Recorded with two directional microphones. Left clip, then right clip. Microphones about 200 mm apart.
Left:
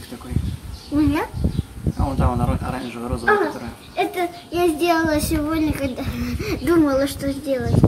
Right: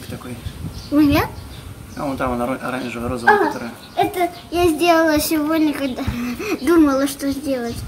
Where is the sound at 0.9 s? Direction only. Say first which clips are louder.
Right 4 dB; 20° right (ahead or behind).